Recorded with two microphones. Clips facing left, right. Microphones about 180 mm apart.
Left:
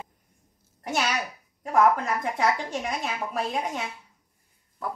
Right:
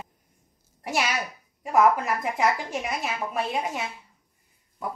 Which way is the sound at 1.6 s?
10° right (ahead or behind).